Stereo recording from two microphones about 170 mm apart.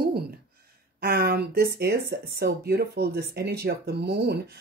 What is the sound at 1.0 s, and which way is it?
Speech, 70° right (ahead or behind).